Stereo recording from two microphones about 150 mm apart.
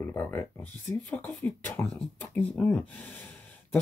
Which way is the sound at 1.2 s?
Centre (ahead or behind).